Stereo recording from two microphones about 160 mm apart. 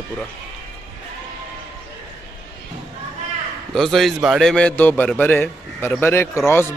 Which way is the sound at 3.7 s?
Centre (ahead or behind).